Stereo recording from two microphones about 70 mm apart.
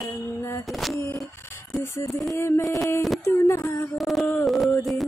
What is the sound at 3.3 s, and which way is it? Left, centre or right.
Female singing, left.